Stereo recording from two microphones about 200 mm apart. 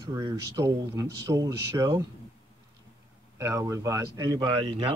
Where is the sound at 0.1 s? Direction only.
20° right (ahead or behind).